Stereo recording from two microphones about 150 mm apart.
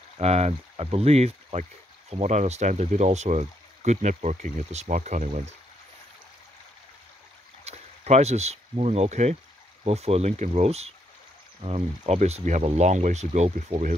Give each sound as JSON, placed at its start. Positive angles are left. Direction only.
{"t": 0.2, "sound": "speech", "side_deg": -45}
{"t": 7.6, "sound": "speech", "side_deg": -45}